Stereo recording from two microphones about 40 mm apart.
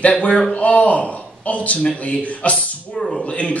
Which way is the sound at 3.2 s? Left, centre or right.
Left.